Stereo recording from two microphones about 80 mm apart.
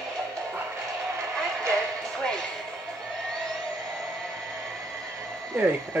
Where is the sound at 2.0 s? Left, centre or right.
Centre.